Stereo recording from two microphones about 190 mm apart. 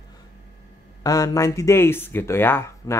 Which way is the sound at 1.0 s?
20° left (ahead or behind).